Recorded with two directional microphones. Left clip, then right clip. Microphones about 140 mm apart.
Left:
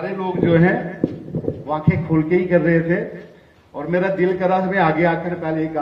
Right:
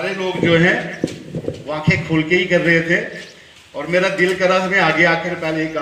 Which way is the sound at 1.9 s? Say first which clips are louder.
Right 4 dB; 25° left (ahead or behind).